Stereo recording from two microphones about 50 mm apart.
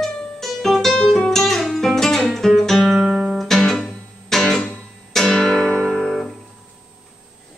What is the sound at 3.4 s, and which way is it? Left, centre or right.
Music, centre.